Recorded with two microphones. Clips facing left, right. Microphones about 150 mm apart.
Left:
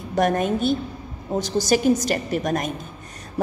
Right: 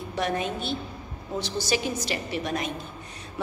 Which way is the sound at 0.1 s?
45° left (ahead or behind).